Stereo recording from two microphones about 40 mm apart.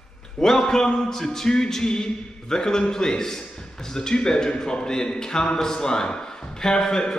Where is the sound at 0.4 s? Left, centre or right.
Centre.